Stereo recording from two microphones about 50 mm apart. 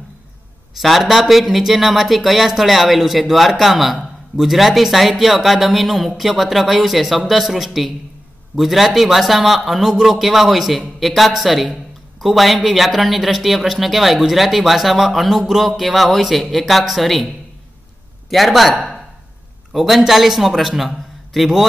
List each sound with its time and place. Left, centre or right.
0.7 s speech: centre
18.3 s speech: centre